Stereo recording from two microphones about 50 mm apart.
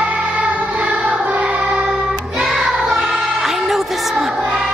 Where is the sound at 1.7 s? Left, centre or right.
Centre.